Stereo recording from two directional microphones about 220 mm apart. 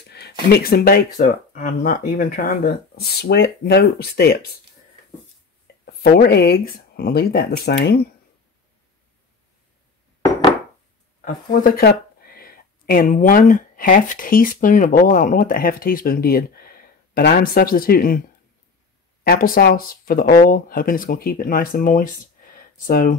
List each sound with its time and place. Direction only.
0.1 s speech: 50° left (ahead or behind)
6.1 s speech: 45° left (ahead or behind)
11.1 s speech: 40° left (ahead or behind)
19.2 s speech: 40° left (ahead or behind)